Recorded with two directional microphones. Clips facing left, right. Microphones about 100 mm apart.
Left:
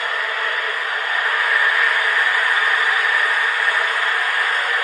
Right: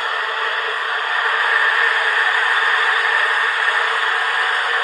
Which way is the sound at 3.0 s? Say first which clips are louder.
Right 1 dB; 15° right (ahead or behind).